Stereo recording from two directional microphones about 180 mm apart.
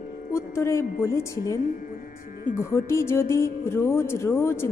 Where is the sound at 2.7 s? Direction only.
15° left (ahead or behind).